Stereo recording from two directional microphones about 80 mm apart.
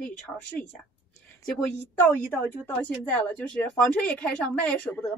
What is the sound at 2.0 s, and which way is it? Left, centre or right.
A woman's voice, left.